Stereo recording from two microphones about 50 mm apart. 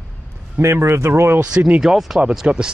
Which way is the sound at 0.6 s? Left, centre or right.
Right.